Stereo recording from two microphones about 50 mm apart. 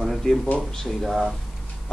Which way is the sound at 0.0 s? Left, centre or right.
Centre.